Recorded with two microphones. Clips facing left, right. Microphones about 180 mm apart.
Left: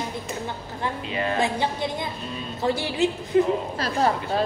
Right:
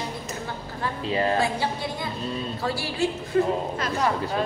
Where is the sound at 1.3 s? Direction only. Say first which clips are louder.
Left 1 dB; 20° left (ahead or behind).